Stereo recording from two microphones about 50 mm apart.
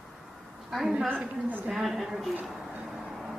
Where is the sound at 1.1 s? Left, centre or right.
Right.